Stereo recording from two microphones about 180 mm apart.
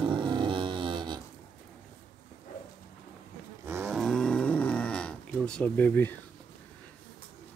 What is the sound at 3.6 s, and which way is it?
Wild animals, 15° right (ahead or behind).